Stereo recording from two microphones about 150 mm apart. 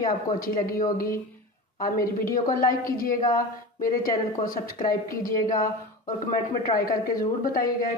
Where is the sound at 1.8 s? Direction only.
70° left (ahead or behind).